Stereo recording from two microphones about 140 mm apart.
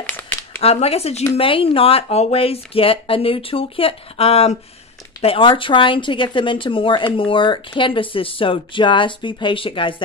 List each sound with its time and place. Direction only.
0.6 s speech: 45° left (ahead or behind)